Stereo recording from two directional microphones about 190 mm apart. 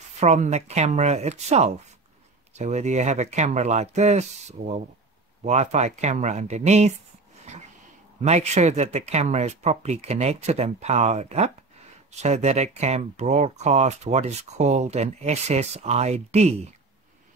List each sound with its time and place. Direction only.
0.2 s speech: 35° right (ahead or behind)
8.2 s speech: 35° right (ahead or behind)